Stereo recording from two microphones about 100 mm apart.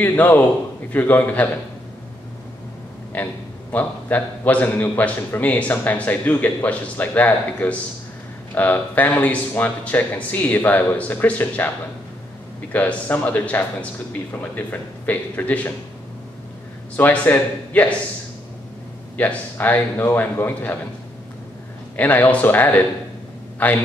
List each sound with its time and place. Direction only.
0.0 s a man's voice: 15° left (ahead or behind)
3.1 s a man's voice: 15° left (ahead or behind)
12.7 s a man's voice: 15° left (ahead or behind)
16.9 s a man's voice: 15° left (ahead or behind)
19.1 s a man's voice: 15° left (ahead or behind)
21.9 s a man's voice: 15° left (ahead or behind)